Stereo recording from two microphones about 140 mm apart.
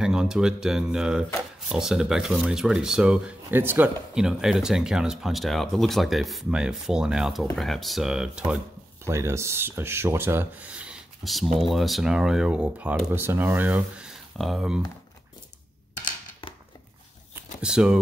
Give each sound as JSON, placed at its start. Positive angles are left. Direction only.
{"t": 0.0, "sound": "speech", "side_deg": -5}
{"t": 9.0, "sound": "speech", "side_deg": -20}
{"t": 17.6, "sound": "speech", "side_deg": -5}